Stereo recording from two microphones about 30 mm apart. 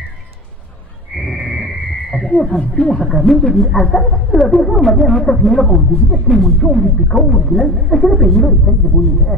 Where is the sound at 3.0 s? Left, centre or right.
Centre.